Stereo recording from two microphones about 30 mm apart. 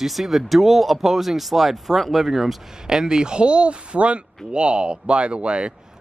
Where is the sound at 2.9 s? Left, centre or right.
Right.